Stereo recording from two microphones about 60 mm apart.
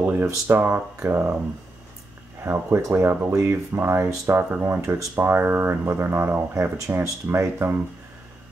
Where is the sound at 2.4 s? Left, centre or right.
Right.